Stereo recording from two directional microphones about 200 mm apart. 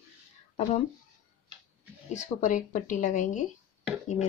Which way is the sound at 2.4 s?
40° left (ahead or behind).